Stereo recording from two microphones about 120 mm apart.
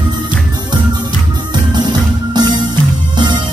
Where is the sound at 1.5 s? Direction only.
35° right (ahead or behind).